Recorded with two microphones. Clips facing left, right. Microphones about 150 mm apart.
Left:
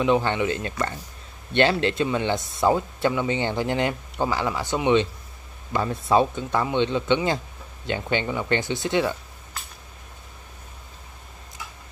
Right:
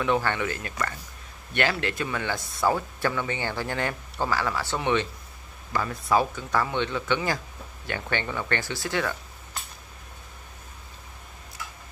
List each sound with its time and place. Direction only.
0.0 s speech: 20° left (ahead or behind)